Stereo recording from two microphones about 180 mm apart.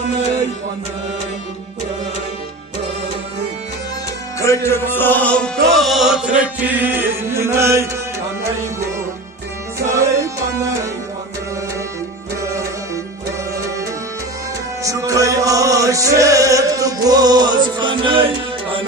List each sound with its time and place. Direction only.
4.4 s music: 15° left (ahead or behind)
5.8 s chant: centre (ahead or behind)
9.8 s music: 15° right (ahead or behind)
14.8 s music: 20° right (ahead or behind)